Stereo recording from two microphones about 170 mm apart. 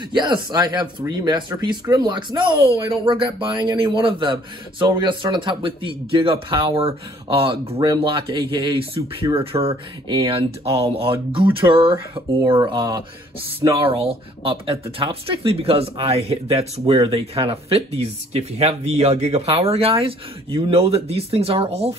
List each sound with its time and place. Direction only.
0.1 s a man's voice: 25° right (ahead or behind)